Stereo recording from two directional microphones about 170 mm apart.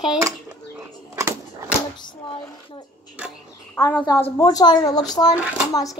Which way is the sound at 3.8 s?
15° left (ahead or behind).